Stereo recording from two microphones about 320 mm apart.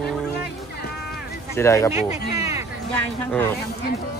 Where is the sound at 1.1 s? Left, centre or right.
Centre.